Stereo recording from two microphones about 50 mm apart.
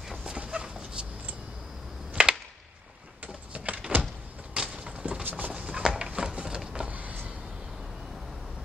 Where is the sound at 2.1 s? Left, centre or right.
Centre.